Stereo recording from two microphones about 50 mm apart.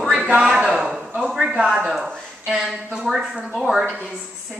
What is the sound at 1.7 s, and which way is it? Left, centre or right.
A woman's voice, centre.